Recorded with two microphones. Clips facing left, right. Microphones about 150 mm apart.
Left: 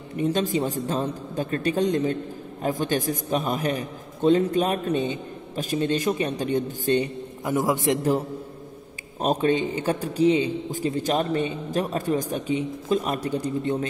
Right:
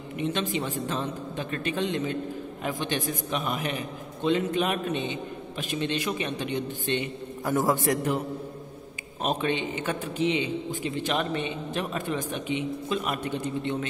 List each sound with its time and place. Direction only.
0.1 s a man's voice: 40° left (ahead or behind)
7.4 s a man's voice: 15° left (ahead or behind)
9.2 s a man's voice: 40° left (ahead or behind)